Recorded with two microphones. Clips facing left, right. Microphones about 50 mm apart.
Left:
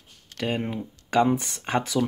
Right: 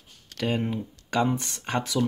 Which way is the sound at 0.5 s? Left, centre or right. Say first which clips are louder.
Right 1 dB; centre.